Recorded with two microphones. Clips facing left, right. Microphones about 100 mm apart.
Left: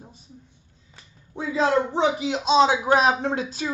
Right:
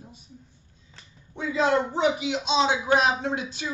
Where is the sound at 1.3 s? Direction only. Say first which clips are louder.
Left 2 dB; 30° left (ahead or behind).